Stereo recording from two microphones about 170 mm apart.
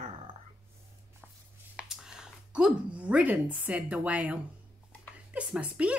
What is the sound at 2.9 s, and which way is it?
Speech, 10° right (ahead or behind).